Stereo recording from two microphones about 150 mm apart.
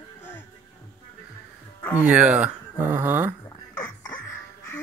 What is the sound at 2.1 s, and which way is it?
Speech, 10° right (ahead or behind).